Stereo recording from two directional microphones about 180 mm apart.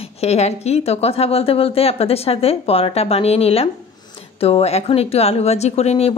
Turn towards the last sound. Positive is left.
turn(degrees=35)  # may be behind; listen again after turning